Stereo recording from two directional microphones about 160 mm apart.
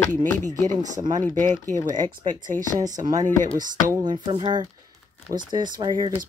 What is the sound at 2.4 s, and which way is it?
Speech, 55° right (ahead or behind).